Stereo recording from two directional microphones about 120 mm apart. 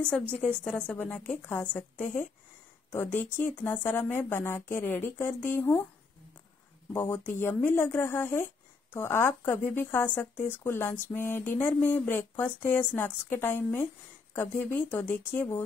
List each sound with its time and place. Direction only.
0.0 s speech: 10° left (ahead or behind)
7.0 s speech: 20° left (ahead or behind)